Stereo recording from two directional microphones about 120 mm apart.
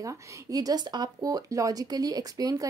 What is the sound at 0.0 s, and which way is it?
Speech, 30° right (ahead or behind).